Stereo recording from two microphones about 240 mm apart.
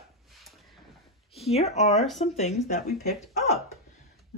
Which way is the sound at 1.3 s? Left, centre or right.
Left.